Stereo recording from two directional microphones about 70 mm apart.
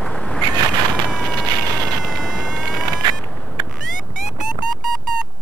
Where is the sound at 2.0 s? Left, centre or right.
Centre.